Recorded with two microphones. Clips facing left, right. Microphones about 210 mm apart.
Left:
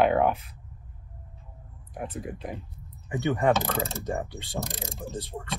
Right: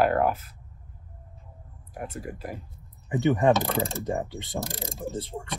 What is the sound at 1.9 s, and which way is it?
Speech, 5° right (ahead or behind).